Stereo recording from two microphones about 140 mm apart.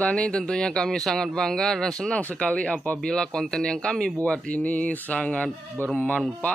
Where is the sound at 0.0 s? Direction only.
5° left (ahead or behind).